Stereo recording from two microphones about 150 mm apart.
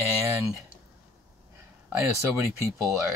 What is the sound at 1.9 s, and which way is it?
Speech, 15° right (ahead or behind).